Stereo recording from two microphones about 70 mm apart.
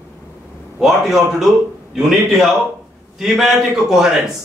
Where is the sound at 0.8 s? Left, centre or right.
Centre.